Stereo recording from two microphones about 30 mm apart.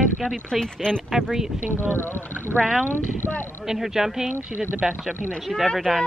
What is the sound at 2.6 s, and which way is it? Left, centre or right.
Speech, centre.